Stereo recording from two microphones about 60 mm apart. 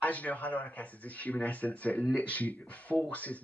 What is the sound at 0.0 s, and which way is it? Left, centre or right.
Speech, left.